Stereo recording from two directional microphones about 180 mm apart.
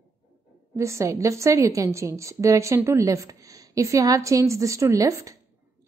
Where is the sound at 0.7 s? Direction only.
15° right (ahead or behind).